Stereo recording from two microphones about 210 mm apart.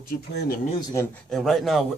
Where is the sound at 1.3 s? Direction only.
Centre (ahead or behind).